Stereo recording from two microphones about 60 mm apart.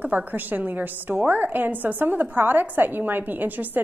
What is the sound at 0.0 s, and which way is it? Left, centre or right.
A woman's voice, right.